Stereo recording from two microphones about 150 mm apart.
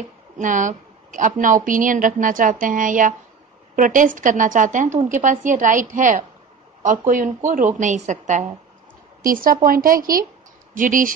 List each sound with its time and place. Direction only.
0.4 s a woman's voice: 60° right (ahead or behind)
9.2 s a woman's voice: 70° right (ahead or behind)